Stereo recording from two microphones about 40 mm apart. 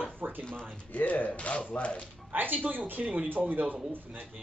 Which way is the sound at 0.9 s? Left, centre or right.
Left.